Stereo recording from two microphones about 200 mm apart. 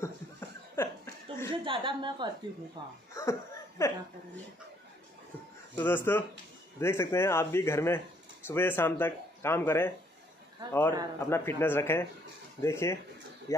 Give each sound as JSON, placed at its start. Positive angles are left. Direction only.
{"t": 0.0, "sound": "chuckle", "side_deg": 10}
{"t": 1.6, "sound": "a woman's voice", "side_deg": -25}
{"t": 3.2, "sound": "laughter", "side_deg": 15}
{"t": 5.8, "sound": "speech", "side_deg": 10}